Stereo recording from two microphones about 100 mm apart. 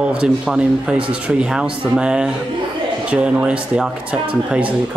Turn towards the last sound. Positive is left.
turn(degrees=-10)  # may be behind; listen again after turning